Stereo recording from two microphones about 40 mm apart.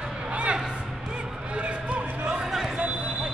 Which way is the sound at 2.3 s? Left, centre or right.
Centre.